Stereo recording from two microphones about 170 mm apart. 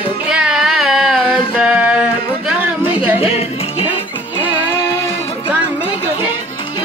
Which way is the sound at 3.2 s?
35° left (ahead or behind).